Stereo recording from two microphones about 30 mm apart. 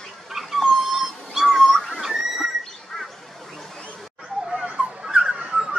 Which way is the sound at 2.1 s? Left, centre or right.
Centre.